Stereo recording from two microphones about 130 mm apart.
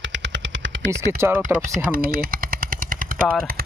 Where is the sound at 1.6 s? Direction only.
90° right.